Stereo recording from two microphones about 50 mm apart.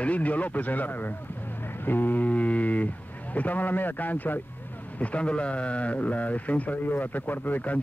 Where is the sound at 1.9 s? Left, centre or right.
Left.